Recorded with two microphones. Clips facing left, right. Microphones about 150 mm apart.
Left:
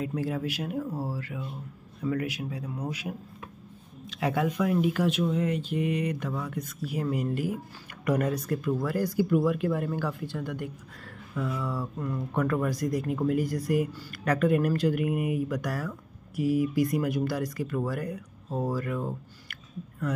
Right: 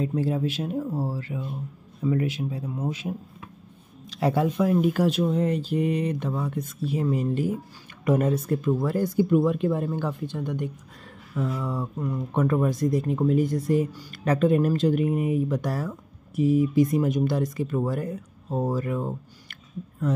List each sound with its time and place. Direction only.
0.0 s speech: 30° right (ahead or behind)